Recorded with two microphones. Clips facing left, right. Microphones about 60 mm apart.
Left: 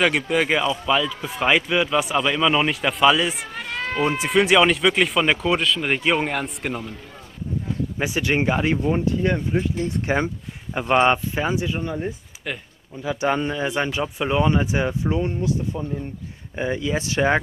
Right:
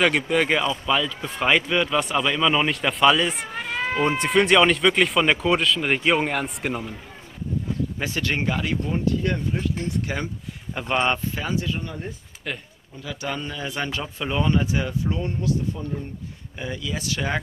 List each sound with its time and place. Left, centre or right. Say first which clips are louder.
0.0 s a man's voice: even; centre
8.0 s speech: left 6 dB; centre
12.5 s a man's voice: left 1 dB; centre
13.0 s speech: left 8 dB; left